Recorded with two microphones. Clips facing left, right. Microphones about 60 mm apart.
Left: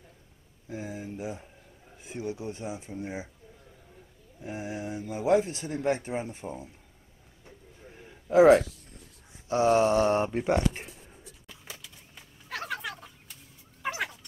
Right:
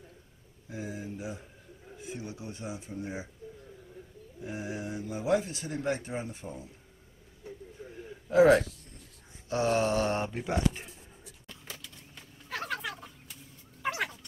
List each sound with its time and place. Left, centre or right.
0.7 s a man's voice: left
4.5 s a man's voice: left
8.3 s a man's voice: left
9.5 s mantra: centre
10.5 s speech: left
11.4 s a sound: centre
13.8 s chicken: centre